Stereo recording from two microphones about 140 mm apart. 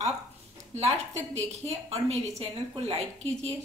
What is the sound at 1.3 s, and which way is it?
Speech, 50° right (ahead or behind).